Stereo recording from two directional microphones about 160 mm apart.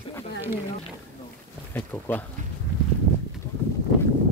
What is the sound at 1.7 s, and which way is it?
Speech, 15° left (ahead or behind).